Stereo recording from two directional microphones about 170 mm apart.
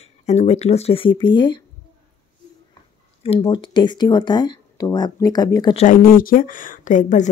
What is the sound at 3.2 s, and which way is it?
Speech, 35° left (ahead or behind).